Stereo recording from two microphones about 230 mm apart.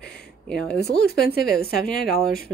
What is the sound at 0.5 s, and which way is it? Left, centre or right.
Speech, centre.